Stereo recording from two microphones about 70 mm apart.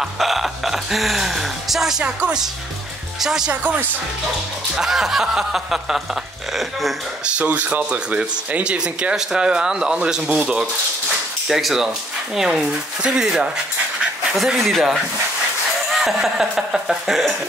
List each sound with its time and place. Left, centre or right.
0.0 s speech: centre
4.7 s speech: centre
7.3 s speech: right
11.4 s speech: centre
14.6 s speech: centre